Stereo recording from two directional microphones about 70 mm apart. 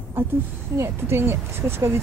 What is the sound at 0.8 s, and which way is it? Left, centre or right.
Speech, right.